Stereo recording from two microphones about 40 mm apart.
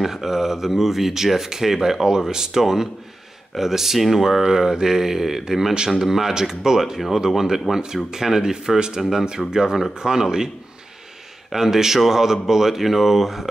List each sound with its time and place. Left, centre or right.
0.0 s speech: centre
11.5 s speech: centre